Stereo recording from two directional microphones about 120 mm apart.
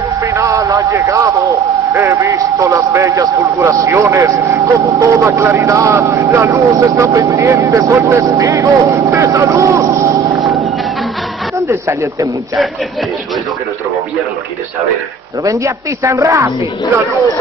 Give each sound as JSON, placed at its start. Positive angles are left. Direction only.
{"t": 0.2, "sound": "a sound", "side_deg": -25}
{"t": 2.0, "sound": "a man's voice", "side_deg": -25}
{"t": 11.6, "sound": "a man's voice", "side_deg": -25}
{"t": 15.4, "sound": "a man's voice", "side_deg": -25}